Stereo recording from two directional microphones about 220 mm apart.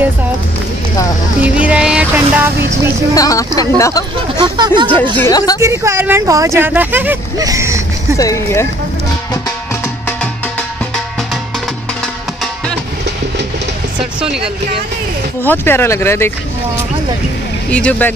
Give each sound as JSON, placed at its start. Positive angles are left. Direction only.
{"t": 1.4, "sound": "speech", "side_deg": -5}
{"t": 3.2, "sound": "speech", "side_deg": 15}
{"t": 4.4, "sound": "speech", "side_deg": -20}
{"t": 5.1, "sound": "speech", "side_deg": 15}
{"t": 5.6, "sound": "speech", "side_deg": -10}
{"t": 8.2, "sound": "speech", "side_deg": 15}
{"t": 15.4, "sound": "speech", "side_deg": 10}
{"t": 17.6, "sound": "speech", "side_deg": 5}